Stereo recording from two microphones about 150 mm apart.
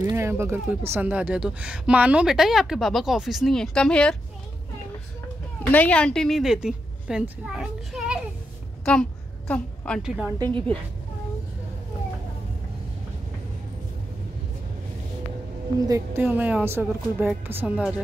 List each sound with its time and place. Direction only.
0.0 s speech: 20° right (ahead or behind); by 4.2 s 5° left (ahead or behind)
5.6 s speech: 10° left (ahead or behind)
9.5 s speech: 5° left (ahead or behind)
10.0 s speech: 5° right (ahead or behind)
10.4 s a woman's voice: 35° right (ahead or behind)
15.8 s speech: 20° right (ahead or behind)